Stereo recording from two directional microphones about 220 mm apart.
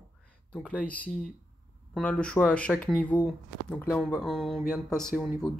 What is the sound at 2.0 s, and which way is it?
Speech, 5° left (ahead or behind).